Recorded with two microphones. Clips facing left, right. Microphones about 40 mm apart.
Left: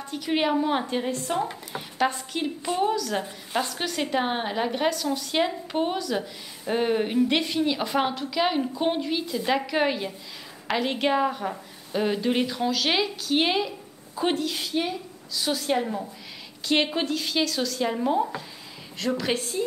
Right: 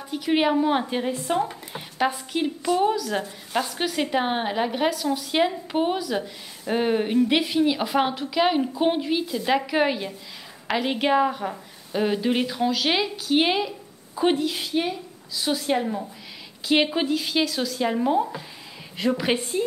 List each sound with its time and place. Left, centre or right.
0.0 s a woman's voice: centre
18.9 s a woman's voice: centre